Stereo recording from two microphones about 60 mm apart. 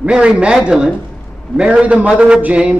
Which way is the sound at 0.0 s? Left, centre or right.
Centre.